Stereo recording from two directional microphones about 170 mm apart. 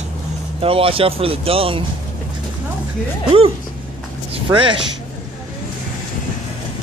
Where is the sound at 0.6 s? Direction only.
35° right (ahead or behind).